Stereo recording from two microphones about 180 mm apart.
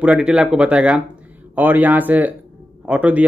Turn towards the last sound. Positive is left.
turn(degrees=-10)  # may be behind; listen again after turning